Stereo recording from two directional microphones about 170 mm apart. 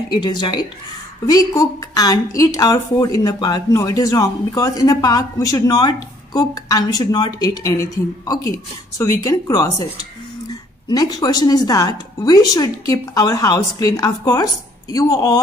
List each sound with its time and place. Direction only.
0.1 s a woman's voice: 25° left (ahead or behind)